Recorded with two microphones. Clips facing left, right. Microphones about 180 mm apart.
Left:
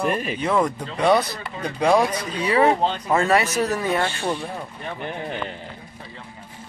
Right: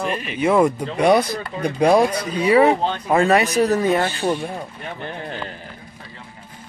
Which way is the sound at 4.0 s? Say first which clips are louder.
Right 3 dB; 35° right (ahead or behind).